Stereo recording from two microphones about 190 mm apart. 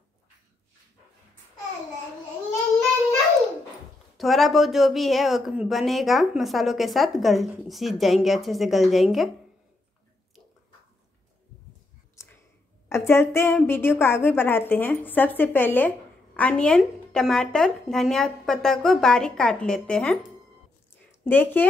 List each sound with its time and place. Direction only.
4.2 s speech: centre (ahead or behind)
12.2 s a sound: 15° left (ahead or behind)
12.8 s a woman's voice: 15° left (ahead or behind)
21.2 s a woman's voice: 10° left (ahead or behind)